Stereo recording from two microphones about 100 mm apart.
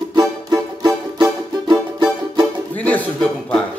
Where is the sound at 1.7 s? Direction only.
45° right (ahead or behind).